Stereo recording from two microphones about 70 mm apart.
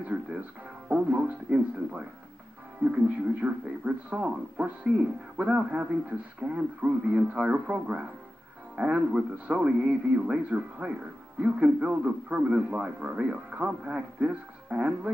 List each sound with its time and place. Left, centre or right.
0.8 s music: right
3.3 s a man's voice: centre